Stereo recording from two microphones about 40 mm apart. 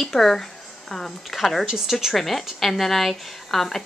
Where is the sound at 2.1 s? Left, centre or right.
Centre.